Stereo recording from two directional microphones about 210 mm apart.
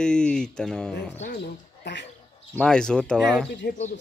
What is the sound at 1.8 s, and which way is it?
Speech, 55° left (ahead or behind).